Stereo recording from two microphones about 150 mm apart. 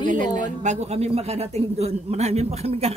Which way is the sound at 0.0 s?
55° right (ahead or behind).